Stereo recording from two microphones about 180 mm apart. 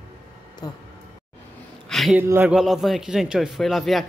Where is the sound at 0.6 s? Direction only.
20° left (ahead or behind).